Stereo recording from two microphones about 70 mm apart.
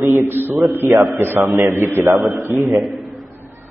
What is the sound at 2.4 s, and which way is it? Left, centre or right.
Speech, right.